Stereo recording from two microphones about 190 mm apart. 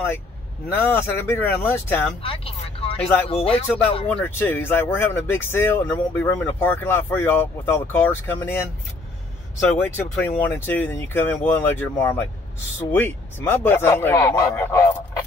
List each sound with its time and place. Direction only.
0.7 s speech: 10° left (ahead or behind)
2.2 s speech: 30° left (ahead or behind)
3.6 s speech: 10° left (ahead or behind)
9.8 s speech: 10° left (ahead or behind)